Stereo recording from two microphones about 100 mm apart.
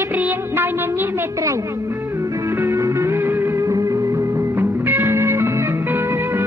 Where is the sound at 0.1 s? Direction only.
20° right (ahead or behind).